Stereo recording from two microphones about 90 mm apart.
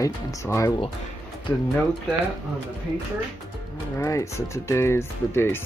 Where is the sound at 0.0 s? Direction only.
35° left (ahead or behind).